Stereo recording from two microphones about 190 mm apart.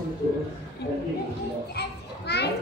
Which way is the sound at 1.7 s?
60° left (ahead or behind).